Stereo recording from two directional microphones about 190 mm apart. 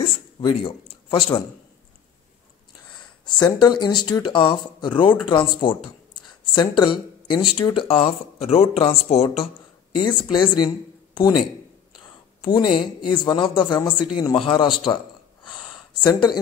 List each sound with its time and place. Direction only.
0.4 s a man's voice: 30° left (ahead or behind)
3.3 s speech: 20° left (ahead or behind)
12.4 s speech: 25° left (ahead or behind)
15.4 s a sound: 25° left (ahead or behind)